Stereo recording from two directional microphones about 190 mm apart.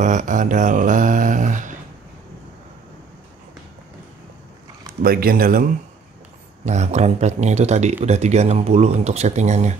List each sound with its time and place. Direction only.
0.0 s mantra: 40° right (ahead or behind)
5.0 s speech: 50° right (ahead or behind)
6.6 s speech: 35° right (ahead or behind)